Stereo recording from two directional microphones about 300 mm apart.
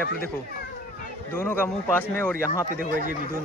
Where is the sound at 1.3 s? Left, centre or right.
Centre.